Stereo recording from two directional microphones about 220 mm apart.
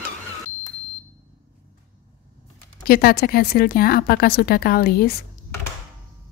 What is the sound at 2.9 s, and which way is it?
A woman's voice, 45° left (ahead or behind).